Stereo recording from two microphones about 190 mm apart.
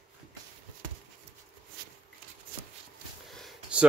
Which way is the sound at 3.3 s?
Centre (ahead or behind).